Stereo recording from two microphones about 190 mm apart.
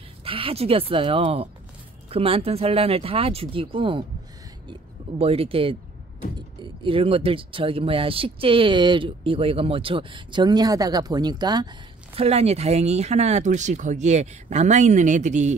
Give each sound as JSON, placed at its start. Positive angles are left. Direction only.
{"t": 0.2, "sound": "speech", "side_deg": -30}
{"t": 5.2, "sound": "speech", "side_deg": -30}
{"t": 12.2, "sound": "speech", "side_deg": -35}